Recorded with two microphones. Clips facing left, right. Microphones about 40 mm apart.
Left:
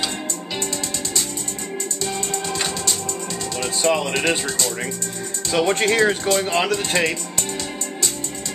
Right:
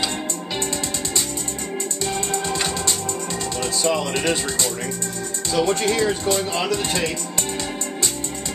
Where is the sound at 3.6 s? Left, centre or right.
Left.